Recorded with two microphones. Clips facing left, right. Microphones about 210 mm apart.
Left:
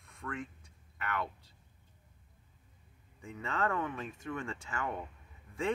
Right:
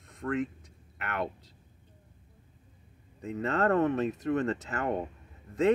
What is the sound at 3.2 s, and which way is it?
Speech, 65° right (ahead or behind).